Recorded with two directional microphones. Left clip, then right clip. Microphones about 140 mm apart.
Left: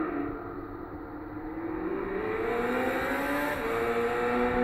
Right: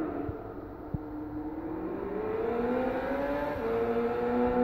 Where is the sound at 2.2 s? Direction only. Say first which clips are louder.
Even; 30° right (ahead or behind).